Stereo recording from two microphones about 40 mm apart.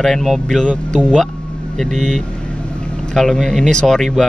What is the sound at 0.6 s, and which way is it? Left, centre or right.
Speech, left.